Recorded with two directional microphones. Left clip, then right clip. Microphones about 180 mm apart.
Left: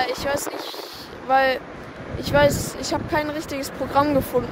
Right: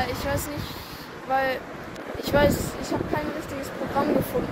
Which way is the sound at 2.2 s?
25° left (ahead or behind).